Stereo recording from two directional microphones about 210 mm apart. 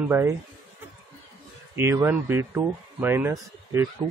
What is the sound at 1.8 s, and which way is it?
Speech, 10° right (ahead or behind).